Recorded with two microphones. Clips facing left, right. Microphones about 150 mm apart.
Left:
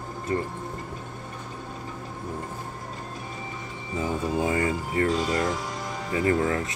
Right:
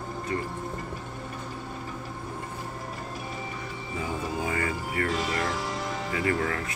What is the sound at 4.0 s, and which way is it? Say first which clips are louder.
Music: left 5 dB; 25° left (ahead or behind).